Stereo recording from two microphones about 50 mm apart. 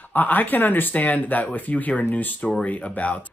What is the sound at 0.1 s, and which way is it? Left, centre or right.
Speech, left.